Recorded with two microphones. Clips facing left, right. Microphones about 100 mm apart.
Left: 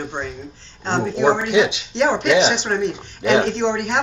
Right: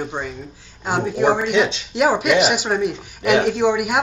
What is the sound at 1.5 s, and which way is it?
Speech, 10° left (ahead or behind).